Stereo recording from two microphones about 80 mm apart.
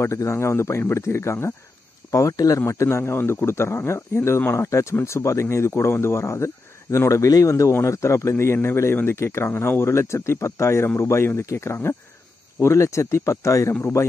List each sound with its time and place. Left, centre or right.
0.0 s speech: left
2.6 s speech: left